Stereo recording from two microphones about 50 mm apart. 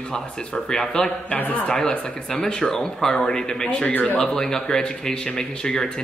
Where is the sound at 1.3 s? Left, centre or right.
Left.